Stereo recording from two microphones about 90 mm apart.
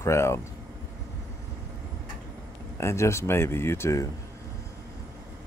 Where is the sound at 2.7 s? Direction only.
30° left (ahead or behind).